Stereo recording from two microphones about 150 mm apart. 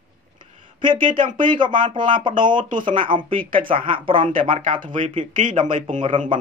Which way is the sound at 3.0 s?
35° right (ahead or behind).